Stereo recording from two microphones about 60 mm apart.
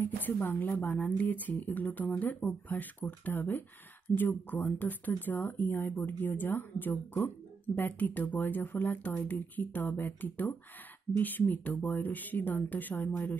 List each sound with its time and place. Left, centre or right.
0.0 s speech: left